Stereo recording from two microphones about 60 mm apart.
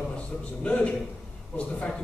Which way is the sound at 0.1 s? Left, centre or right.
Centre.